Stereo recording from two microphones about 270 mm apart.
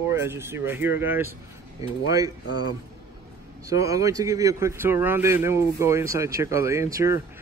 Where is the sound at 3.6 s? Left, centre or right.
Centre.